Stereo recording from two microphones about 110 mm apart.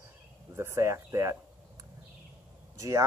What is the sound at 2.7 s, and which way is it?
Speech, 30° right (ahead or behind).